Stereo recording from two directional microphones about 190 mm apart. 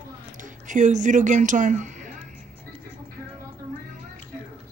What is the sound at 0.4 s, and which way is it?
Speech, 40° right (ahead or behind).